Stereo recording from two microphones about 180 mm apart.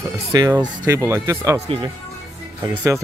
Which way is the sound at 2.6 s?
15° right (ahead or behind).